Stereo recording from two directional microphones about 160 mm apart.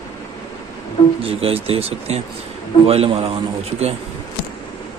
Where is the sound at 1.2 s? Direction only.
35° right (ahead or behind).